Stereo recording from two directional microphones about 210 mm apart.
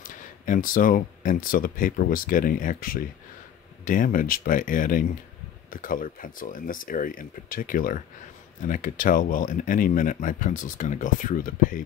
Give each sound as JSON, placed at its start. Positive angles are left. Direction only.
{"t": 0.0, "sound": "speech", "side_deg": 40}